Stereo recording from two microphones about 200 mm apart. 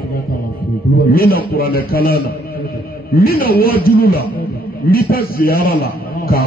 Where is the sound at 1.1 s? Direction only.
50° left (ahead or behind).